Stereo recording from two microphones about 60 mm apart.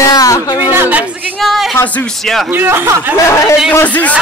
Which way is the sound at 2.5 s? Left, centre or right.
Right.